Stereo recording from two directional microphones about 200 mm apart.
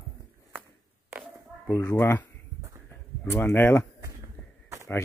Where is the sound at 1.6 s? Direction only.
10° left (ahead or behind).